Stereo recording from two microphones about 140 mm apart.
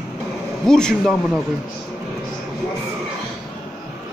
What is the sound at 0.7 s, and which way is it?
Speech, 5° left (ahead or behind).